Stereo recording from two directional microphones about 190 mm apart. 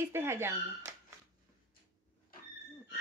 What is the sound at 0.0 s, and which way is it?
Speech, 10° right (ahead or behind).